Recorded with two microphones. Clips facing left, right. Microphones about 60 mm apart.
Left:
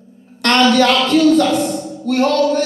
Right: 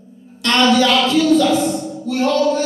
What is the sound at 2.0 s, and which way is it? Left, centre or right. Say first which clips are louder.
Speech: left 3 dB; left.